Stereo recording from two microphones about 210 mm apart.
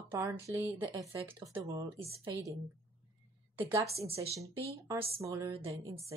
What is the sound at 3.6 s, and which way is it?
Speech, 15° right (ahead or behind).